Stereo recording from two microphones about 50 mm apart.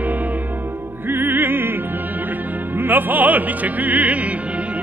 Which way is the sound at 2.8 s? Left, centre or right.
Right.